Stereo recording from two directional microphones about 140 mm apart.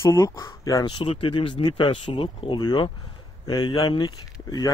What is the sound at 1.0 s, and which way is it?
Speech, 40° left (ahead or behind).